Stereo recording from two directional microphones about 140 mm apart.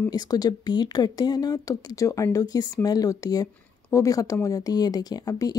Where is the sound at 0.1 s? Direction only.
25° left (ahead or behind).